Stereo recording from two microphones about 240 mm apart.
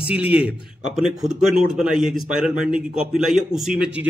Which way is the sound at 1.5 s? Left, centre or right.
Centre.